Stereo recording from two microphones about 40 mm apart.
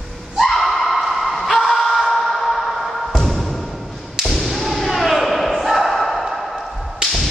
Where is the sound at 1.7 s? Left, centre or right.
Centre.